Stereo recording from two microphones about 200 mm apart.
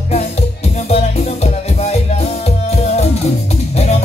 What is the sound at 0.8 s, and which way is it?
Music, 30° left (ahead or behind).